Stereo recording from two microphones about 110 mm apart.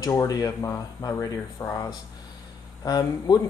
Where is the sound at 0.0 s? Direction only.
30° left (ahead or behind).